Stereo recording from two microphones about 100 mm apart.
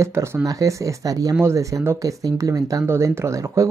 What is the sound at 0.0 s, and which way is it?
Speech, 25° right (ahead or behind).